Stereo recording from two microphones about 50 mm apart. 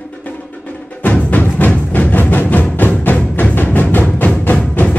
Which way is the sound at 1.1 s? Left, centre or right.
Left.